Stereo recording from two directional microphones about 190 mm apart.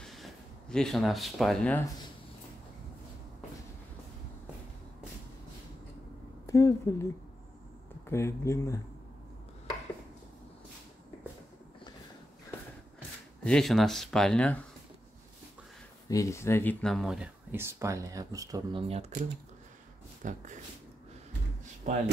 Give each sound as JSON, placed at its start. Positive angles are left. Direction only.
{"t": 0.0, "sound": "a sound", "side_deg": 0}
{"t": 6.4, "sound": "speech", "side_deg": 15}
{"t": 8.1, "sound": "speech", "side_deg": 15}
{"t": 13.4, "sound": "speech", "side_deg": 5}
{"t": 16.1, "sound": "speech", "side_deg": 15}
{"t": 20.2, "sound": "speech", "side_deg": -40}
{"t": 21.8, "sound": "speech", "side_deg": -40}